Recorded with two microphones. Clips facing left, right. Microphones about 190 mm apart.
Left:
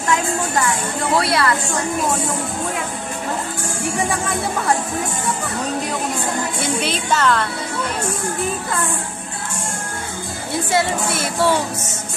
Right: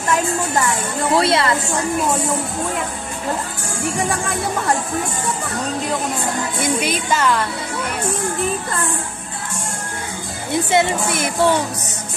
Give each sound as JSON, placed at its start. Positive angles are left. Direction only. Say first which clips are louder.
{"t": 1.1, "sound": "a woman's voice", "louder": "right 2 dB", "side_deg": -25}
{"t": 6.8, "sound": "music", "louder": "even", "side_deg": -10}
{"t": 10.7, "sound": "music", "louder": "right 1 dB", "side_deg": -20}